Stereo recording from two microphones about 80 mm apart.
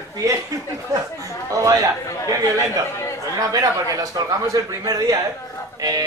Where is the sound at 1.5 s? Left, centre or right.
Right.